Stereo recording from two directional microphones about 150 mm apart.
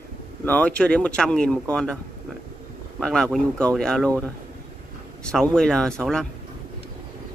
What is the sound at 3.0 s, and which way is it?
Speech, 5° left (ahead or behind).